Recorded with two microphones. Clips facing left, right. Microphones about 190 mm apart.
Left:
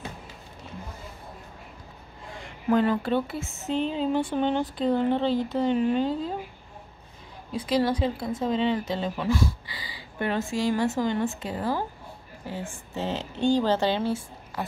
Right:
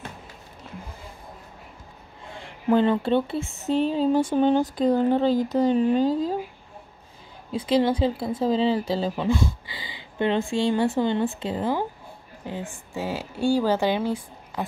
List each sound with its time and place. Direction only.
2.7 s speech: 30° right (ahead or behind)
7.5 s speech: 25° right (ahead or behind)